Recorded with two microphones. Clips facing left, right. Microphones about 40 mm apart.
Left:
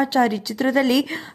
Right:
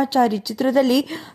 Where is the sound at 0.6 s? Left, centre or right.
Left.